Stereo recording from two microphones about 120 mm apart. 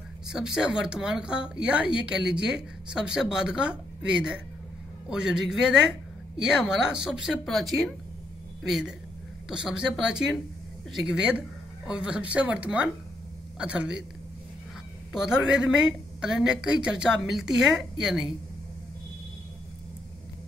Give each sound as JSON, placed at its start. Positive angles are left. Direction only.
{"t": 0.3, "sound": "a woman's voice", "side_deg": -5}
{"t": 15.1, "sound": "a woman's voice", "side_deg": -5}